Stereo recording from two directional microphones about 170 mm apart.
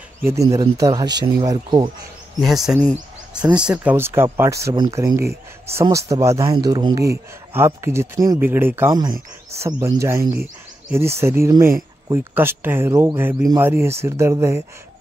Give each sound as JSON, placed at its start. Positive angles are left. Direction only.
{"t": 0.2, "sound": "speech", "side_deg": -15}
{"t": 2.4, "sound": "speech", "side_deg": 0}